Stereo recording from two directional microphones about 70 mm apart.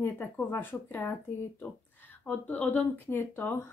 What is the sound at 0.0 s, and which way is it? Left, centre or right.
Speech, left.